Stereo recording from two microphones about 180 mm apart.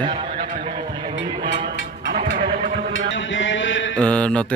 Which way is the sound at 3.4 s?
90° left.